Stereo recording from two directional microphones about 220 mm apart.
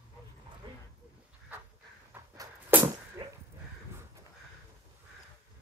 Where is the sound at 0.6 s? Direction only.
20° right (ahead or behind).